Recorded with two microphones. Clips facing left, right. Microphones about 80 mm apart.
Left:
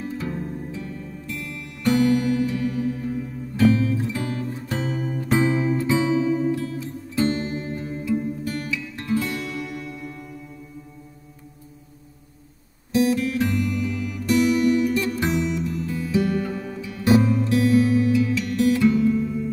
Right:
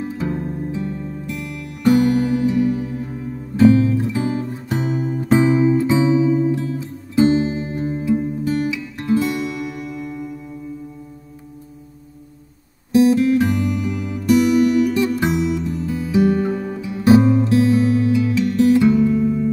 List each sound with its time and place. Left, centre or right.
0.0 s music: centre
4.1 s music: right; by 5.8 s centre
5.8 s music: centre
6.1 s music: centre
6.5 s music: right
12.9 s music: right
18.9 s music: centre